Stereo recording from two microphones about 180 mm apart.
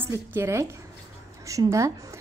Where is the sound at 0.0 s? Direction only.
15° right (ahead or behind).